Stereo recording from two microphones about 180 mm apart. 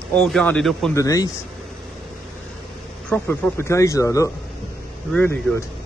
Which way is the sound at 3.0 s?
10° left (ahead or behind).